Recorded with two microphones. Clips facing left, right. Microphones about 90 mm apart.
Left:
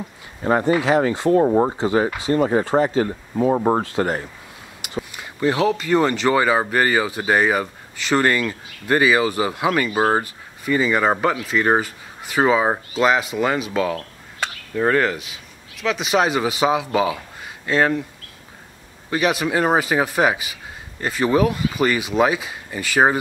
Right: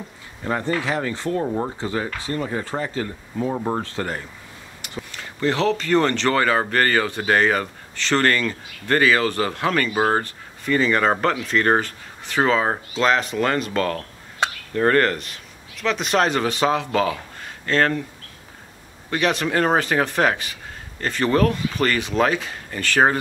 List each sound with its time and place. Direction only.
0.4 s speech: 25° left (ahead or behind)
0.7 s speech: 15° left (ahead or behind)
1.4 s speech: 30° left (ahead or behind)
1.8 s speech: 20° left (ahead or behind)
3.8 s speech: 15° left (ahead or behind)
19.0 s speech: 5° left (ahead or behind)